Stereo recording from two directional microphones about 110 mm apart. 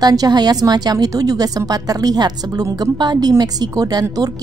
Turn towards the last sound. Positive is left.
turn(degrees=-35)  # may be behind; listen again after turning